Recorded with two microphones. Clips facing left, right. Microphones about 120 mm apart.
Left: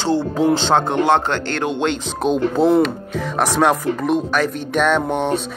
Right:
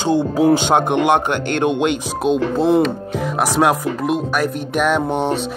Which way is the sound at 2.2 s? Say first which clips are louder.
Left 1 dB; centre (ahead or behind).